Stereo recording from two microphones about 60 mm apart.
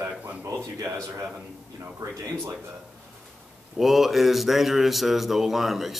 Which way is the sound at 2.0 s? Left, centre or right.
Right.